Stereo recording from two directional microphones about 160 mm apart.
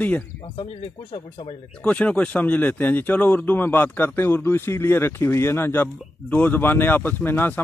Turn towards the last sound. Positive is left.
turn(degrees=15)  # may be behind; listen again after turning